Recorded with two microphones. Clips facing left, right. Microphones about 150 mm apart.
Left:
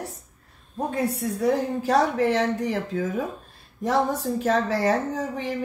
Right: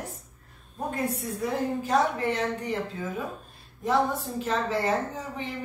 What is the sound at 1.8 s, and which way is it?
A woman's voice, 90° left.